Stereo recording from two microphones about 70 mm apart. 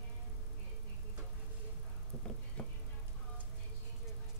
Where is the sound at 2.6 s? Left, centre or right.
Centre.